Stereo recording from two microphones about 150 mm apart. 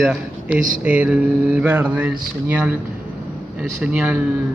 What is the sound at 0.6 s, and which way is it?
Speech, 65° right (ahead or behind).